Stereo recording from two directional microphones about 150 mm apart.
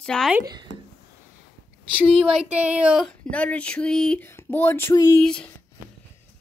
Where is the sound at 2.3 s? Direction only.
10° right (ahead or behind).